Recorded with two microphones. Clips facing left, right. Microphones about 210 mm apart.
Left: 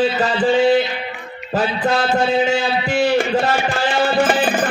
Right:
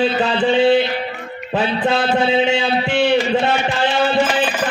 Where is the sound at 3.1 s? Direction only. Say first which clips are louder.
Even; 50° left (ahead or behind).